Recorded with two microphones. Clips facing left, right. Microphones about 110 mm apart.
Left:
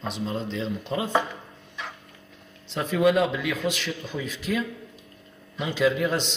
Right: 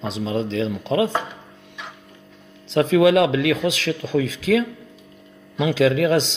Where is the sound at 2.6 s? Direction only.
90° right.